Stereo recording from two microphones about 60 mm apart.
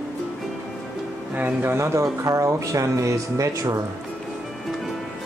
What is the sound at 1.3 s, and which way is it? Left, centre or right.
Speech, right.